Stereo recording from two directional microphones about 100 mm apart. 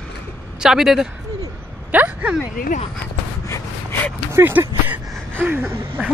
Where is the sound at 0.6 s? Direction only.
5° right (ahead or behind).